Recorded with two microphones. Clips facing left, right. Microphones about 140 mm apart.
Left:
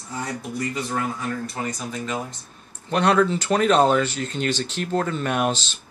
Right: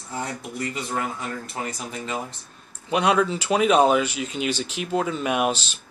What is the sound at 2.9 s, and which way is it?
Speech, 10° right (ahead or behind).